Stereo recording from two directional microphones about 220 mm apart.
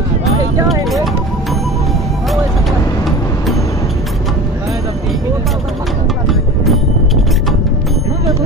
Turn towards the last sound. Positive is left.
turn(degrees=0)  # may be behind; listen again after turning